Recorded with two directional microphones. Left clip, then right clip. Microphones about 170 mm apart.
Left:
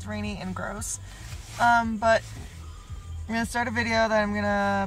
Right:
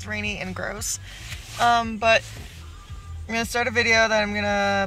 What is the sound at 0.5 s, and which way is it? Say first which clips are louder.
Speech: right 4 dB; 15° right (ahead or behind).